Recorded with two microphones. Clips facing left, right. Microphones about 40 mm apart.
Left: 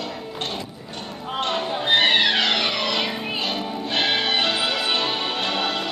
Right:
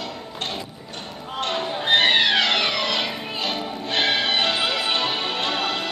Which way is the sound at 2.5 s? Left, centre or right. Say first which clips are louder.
Right 1 dB; centre.